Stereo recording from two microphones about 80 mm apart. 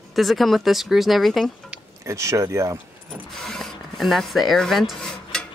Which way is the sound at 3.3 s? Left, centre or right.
Centre.